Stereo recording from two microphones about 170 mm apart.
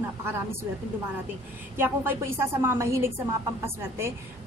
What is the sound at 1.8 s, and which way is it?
A woman's voice, 15° right (ahead or behind).